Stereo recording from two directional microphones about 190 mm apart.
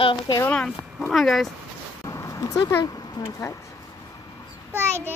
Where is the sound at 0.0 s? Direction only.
25° left (ahead or behind).